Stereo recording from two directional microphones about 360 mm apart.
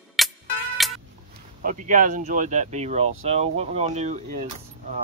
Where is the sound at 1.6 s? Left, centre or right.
Right.